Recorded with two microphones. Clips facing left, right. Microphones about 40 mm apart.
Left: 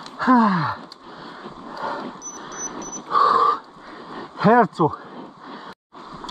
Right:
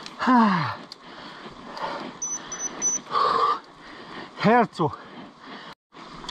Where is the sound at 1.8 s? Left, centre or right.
Right.